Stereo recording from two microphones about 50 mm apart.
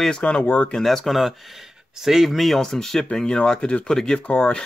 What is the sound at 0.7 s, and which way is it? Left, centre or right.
Speech, centre.